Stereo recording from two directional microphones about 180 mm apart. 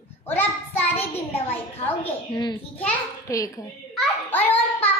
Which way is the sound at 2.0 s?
25° left (ahead or behind).